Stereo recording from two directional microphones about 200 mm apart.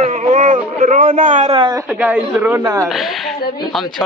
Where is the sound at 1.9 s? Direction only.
5° right (ahead or behind).